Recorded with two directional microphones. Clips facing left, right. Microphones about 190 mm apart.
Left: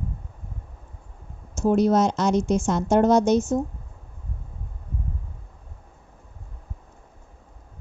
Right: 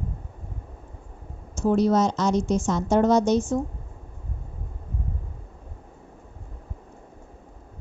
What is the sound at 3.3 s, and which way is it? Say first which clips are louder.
Speech: left 2 dB; 20° left (ahead or behind).